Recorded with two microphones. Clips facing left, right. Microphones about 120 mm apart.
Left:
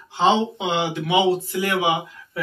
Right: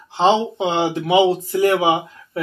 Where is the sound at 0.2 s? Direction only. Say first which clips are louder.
Right 3 dB; 30° right (ahead or behind).